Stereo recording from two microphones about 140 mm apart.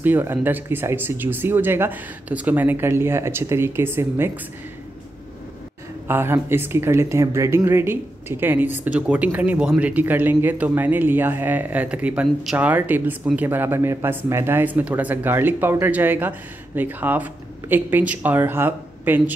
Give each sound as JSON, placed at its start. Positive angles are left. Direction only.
{"t": 0.0, "sound": "speech", "side_deg": -15}
{"t": 6.0, "sound": "speech", "side_deg": -15}